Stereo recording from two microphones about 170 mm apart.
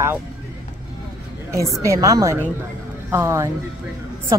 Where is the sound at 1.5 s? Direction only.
15° right (ahead or behind).